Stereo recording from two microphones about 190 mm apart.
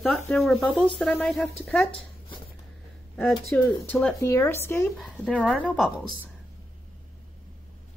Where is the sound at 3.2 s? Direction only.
Centre (ahead or behind).